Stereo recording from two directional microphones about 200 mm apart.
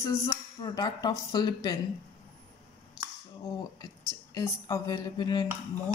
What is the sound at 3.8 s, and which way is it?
Speech, 20° left (ahead or behind).